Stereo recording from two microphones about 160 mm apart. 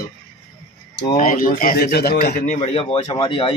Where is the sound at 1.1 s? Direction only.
55° left (ahead or behind); by 2.4 s 75° left (ahead or behind).